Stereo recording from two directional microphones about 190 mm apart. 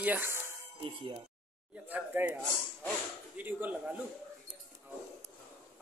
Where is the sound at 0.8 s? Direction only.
30° right (ahead or behind).